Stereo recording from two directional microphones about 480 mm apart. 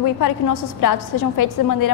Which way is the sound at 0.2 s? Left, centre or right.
Left.